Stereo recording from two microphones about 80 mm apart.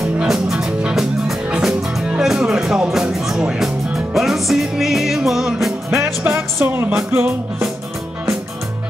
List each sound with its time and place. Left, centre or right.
0.3 s music: centre
6.2 s music: right